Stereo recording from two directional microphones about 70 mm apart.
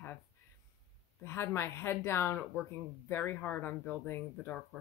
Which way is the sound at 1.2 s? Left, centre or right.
Left.